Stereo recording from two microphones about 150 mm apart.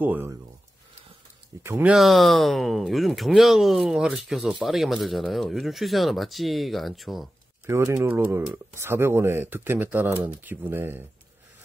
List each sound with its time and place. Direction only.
0.0 s speech: 15° right (ahead or behind)
1.6 s speech: 20° right (ahead or behind)
1.9 s speech: centre (ahead or behind)
7.6 s speech: 20° right (ahead or behind)